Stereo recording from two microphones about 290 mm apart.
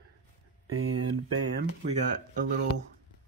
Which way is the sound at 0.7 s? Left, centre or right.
Right.